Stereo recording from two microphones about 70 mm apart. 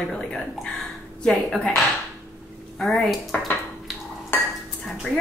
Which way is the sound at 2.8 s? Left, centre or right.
Centre.